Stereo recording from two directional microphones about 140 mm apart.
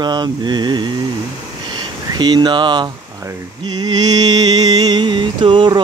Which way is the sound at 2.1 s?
30° right (ahead or behind).